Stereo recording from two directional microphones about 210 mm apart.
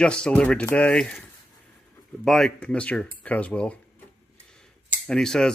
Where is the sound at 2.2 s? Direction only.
Centre (ahead or behind).